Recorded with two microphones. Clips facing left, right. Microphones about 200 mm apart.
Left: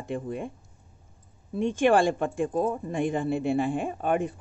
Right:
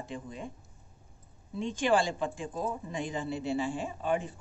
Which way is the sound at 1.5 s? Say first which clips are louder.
Left 6 dB; 55° left (ahead or behind).